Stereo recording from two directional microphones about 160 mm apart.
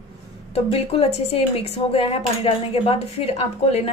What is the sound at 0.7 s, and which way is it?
Speech, 35° left (ahead or behind).